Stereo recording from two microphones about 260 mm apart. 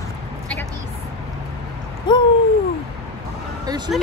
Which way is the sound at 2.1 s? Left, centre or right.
Centre.